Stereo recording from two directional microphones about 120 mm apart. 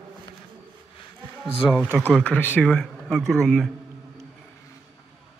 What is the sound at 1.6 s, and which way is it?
A man's voice, 20° left (ahead or behind).